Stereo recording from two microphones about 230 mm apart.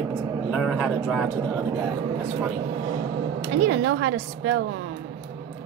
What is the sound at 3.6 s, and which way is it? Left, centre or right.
A woman's voice, right.